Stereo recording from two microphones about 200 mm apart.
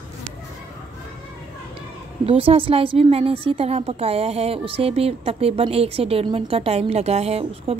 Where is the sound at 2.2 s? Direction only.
25° right (ahead or behind).